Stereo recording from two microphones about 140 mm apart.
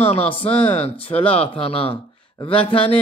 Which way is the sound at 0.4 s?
45° left (ahead or behind).